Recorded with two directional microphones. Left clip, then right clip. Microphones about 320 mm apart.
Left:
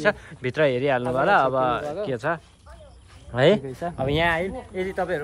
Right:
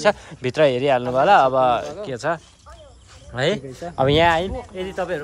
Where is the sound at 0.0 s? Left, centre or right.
Centre.